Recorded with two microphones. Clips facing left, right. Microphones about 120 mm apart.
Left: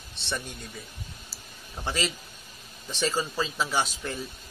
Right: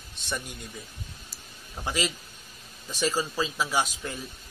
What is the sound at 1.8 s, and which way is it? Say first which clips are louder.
A man's voice: even; 10° right (ahead or behind).